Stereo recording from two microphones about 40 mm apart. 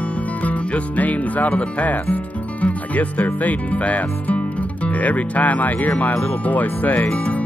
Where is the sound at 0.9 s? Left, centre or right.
Left.